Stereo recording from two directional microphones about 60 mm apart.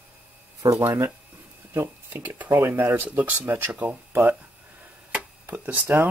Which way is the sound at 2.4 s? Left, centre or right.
Right.